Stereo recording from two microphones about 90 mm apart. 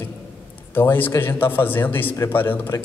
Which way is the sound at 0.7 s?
20° left (ahead or behind).